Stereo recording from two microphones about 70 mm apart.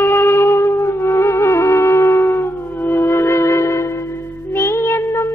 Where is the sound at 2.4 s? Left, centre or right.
Left.